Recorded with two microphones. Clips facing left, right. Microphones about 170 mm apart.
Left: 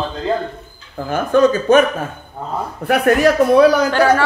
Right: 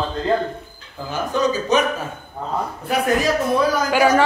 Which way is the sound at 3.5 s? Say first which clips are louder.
Left 9 dB; 70° left (ahead or behind).